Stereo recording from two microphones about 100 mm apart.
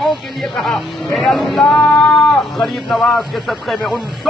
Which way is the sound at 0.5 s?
5° left (ahead or behind).